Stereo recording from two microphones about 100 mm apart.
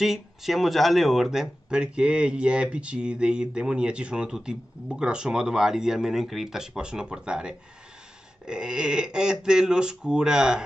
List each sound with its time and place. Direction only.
0.0 s speech: 5° right (ahead or behind)